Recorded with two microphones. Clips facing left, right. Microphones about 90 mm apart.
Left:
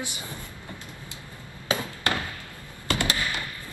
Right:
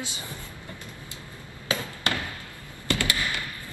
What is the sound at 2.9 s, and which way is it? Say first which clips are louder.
Fireworks: even; 20° left (ahead or behind).